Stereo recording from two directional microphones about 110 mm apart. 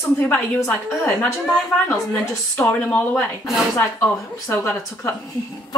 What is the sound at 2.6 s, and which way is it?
Speech, 15° left (ahead or behind).